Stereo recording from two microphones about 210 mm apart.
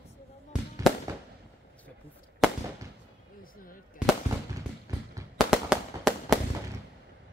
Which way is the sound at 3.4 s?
40° left (ahead or behind).